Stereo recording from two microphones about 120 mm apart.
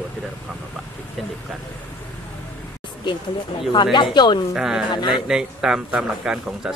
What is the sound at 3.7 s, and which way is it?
Speech, 40° left (ahead or behind).